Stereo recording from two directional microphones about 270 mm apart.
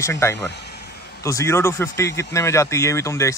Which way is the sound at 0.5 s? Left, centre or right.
Left.